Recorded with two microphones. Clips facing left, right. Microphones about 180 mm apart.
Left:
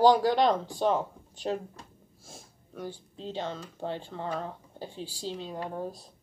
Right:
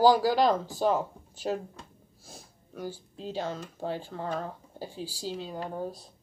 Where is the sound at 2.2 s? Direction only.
Centre (ahead or behind).